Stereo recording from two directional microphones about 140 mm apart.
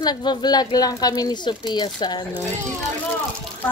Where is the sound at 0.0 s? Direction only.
30° left (ahead or behind).